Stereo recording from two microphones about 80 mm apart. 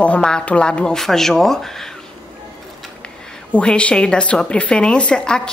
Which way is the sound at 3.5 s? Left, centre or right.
Centre.